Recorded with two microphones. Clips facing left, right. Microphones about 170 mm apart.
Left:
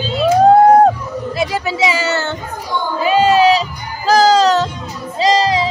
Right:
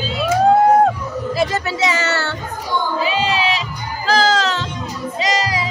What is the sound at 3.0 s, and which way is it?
Music, 45° left (ahead or behind).